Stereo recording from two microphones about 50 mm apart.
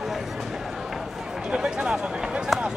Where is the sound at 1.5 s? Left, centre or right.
Centre.